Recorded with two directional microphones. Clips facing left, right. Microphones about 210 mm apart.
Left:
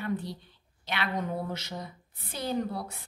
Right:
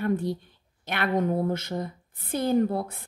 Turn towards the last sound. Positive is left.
turn(degrees=-50)  # may be behind; listen again after turning